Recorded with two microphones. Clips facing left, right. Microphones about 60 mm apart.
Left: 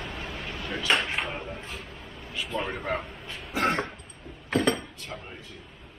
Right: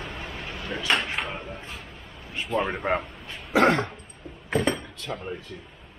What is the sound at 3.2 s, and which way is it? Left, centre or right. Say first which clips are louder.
Throat clearing: even; centre.